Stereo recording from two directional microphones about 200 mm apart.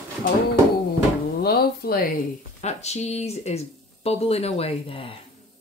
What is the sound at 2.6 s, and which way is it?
Speech, 35° left (ahead or behind).